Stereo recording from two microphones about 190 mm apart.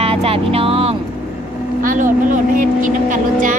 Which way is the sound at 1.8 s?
45° right (ahead or behind).